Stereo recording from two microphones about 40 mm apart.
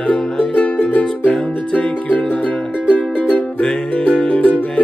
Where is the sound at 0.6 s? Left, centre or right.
Left.